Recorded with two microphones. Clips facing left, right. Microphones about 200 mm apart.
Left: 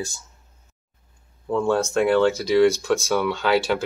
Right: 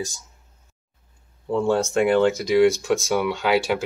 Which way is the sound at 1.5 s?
15° right (ahead or behind).